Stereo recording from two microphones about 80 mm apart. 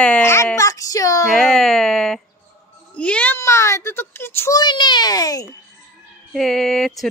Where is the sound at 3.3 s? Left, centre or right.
Left.